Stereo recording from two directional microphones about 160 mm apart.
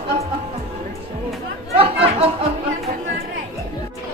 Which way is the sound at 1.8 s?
35° right (ahead or behind).